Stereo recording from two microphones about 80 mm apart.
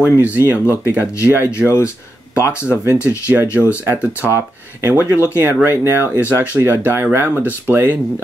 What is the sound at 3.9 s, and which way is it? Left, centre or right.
Speech, right.